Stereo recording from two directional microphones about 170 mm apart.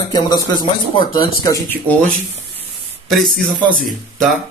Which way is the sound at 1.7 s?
10° left (ahead or behind).